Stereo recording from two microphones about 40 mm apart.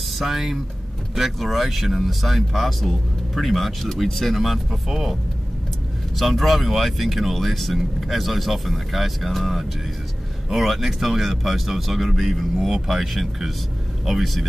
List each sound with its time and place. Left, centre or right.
0.2 s speech: centre